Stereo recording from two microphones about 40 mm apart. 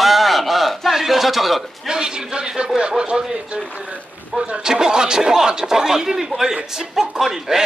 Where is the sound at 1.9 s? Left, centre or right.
Centre.